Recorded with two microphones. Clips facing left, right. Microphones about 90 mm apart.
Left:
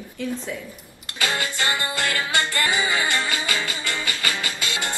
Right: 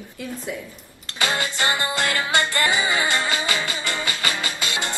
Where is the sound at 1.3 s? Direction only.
25° right (ahead or behind).